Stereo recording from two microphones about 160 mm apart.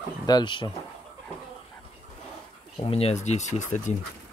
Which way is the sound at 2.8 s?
40° left (ahead or behind).